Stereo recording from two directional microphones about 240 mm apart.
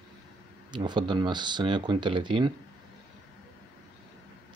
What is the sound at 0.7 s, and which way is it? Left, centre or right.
Speech, centre.